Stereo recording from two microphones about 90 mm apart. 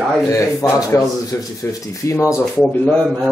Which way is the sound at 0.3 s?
40° left (ahead or behind).